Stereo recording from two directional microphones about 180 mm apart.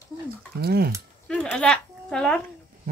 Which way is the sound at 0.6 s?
60° right (ahead or behind).